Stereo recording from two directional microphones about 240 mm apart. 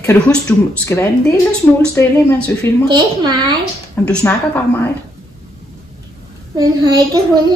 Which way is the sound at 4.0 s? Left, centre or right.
Centre.